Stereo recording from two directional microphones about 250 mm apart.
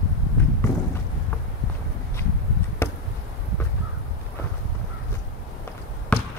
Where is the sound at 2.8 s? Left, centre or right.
Centre.